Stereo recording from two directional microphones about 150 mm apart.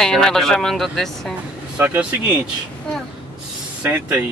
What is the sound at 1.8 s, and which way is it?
Speech, 10° right (ahead or behind).